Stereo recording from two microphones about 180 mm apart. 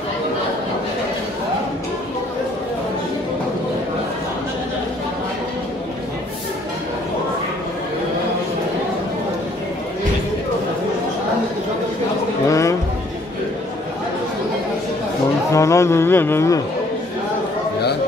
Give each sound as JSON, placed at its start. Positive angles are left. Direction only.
{"t": 12.4, "sound": "music", "side_deg": 15}
{"t": 15.5, "sound": "speech", "side_deg": 15}